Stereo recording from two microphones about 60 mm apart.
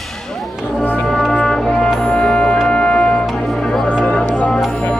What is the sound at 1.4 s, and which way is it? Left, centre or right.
Music, centre.